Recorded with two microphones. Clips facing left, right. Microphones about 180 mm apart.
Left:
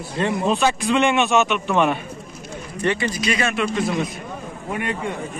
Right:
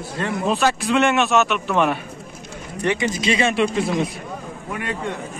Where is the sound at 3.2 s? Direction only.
25° right (ahead or behind).